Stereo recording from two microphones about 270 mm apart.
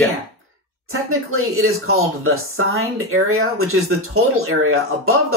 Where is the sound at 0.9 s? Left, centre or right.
Right.